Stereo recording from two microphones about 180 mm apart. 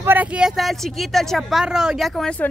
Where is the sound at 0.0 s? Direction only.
10° right (ahead or behind).